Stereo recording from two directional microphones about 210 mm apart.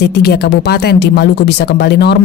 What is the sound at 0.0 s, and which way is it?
Speech, 50° left (ahead or behind).